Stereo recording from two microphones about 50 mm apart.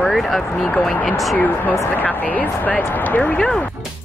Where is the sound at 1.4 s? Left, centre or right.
Left.